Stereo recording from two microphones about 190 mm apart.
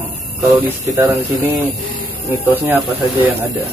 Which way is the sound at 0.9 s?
20° right (ahead or behind).